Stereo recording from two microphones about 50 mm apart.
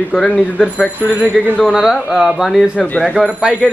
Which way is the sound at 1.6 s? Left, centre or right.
Centre.